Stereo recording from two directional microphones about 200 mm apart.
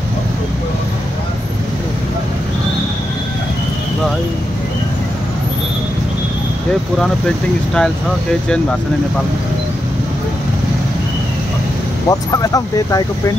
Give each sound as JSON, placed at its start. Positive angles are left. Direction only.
{"t": 12.1, "sound": "speech", "side_deg": 15}